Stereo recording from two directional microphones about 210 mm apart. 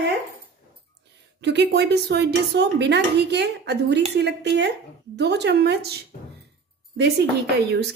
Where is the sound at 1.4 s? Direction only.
55° right (ahead or behind).